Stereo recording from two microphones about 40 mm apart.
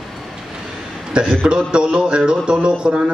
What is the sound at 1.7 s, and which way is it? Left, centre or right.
Speech, right.